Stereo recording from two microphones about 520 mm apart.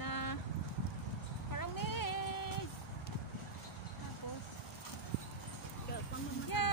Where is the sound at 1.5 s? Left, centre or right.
Left.